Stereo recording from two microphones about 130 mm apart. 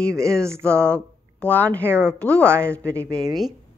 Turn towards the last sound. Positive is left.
turn(degrees=10)  # may be behind; listen again after turning